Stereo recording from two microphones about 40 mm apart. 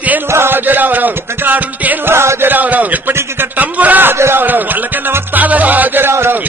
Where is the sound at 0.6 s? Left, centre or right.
Right.